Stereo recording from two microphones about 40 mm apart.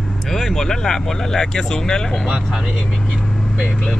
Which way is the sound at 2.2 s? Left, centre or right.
Centre.